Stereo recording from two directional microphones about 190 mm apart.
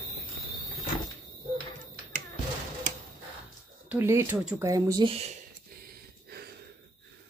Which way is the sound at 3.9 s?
15° right (ahead or behind).